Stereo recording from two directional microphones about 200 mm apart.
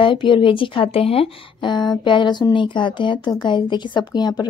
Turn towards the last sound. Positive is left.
turn(degrees=20)  # may be behind; listen again after turning